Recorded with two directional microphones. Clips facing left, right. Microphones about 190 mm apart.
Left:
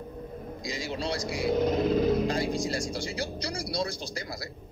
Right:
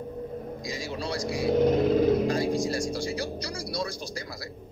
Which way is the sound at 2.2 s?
25° left (ahead or behind).